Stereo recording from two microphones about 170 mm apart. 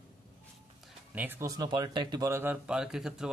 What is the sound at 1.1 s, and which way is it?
Speech, 10° right (ahead or behind).